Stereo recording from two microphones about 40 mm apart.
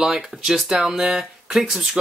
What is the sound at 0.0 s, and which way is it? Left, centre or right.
Speech, centre.